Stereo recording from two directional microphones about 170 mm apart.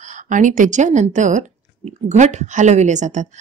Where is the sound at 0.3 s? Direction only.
50° right (ahead or behind).